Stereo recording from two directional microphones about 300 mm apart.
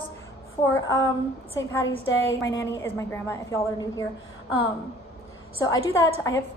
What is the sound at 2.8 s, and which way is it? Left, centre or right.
A woman's voice, centre.